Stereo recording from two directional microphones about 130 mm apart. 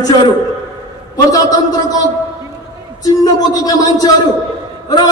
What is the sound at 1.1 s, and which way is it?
Speech, 30° left (ahead or behind).